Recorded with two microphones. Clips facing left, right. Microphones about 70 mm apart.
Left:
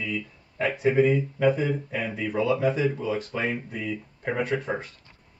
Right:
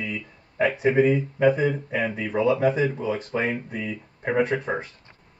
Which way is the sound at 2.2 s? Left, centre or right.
Right.